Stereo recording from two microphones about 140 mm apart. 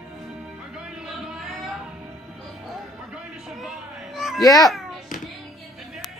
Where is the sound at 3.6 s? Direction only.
Centre (ahead or behind).